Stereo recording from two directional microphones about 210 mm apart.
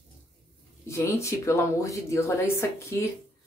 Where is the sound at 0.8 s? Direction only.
15° left (ahead or behind).